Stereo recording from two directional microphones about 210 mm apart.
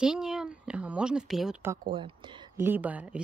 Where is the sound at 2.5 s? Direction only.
10° right (ahead or behind).